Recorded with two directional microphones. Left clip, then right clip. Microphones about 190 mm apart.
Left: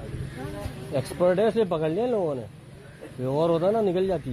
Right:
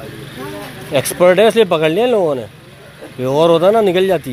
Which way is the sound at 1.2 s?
20° right (ahead or behind).